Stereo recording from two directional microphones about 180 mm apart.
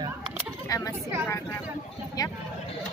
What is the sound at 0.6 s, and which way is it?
Speech, 20° left (ahead or behind).